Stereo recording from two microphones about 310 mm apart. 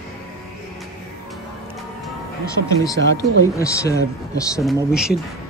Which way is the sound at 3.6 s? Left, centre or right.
Centre.